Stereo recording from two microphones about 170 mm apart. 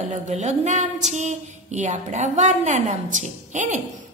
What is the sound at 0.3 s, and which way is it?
A woman's voice, 45° right (ahead or behind).